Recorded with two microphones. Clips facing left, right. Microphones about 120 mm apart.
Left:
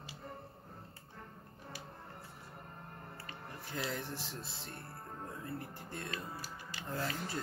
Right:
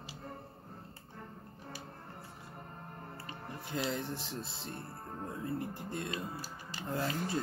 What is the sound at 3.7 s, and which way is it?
Speech, 20° right (ahead or behind).